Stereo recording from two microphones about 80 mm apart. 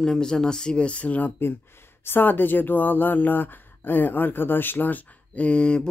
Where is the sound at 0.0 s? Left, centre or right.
Centre.